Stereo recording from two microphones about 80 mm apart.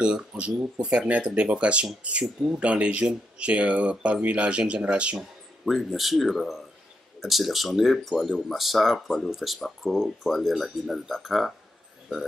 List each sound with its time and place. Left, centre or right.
0.0 s speech: centre
5.7 s speech: centre